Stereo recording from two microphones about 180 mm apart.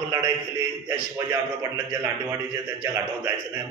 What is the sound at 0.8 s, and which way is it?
A man's voice, 15° right (ahead or behind).